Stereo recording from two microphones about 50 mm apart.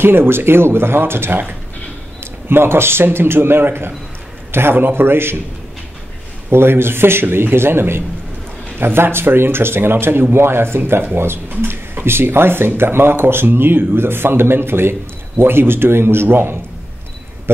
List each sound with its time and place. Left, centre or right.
0.0 s speech: right
2.5 s speech: right
6.5 s speech: right